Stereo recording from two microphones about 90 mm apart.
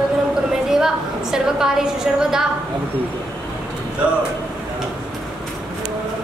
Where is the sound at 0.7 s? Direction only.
5° right (ahead or behind).